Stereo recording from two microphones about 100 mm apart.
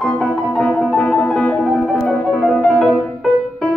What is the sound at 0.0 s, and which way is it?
Music, 5° left (ahead or behind).